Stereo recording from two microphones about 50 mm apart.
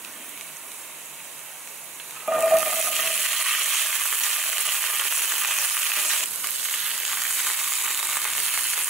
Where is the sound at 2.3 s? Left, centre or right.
Centre.